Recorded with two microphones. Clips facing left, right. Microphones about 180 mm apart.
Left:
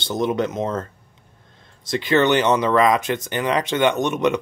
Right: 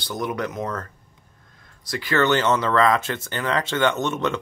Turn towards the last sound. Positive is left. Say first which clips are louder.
# left 4 dB
turn(degrees=15)  # may be behind; listen again after turning